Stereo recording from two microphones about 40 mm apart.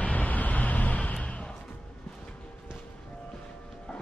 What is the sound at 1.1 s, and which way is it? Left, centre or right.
Basketball bounce, left.